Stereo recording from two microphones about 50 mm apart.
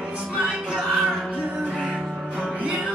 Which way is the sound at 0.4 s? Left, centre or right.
Centre.